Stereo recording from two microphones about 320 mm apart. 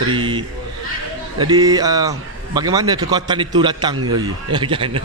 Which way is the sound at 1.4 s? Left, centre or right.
Centre.